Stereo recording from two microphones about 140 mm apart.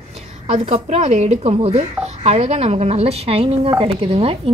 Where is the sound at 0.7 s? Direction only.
50° right (ahead or behind).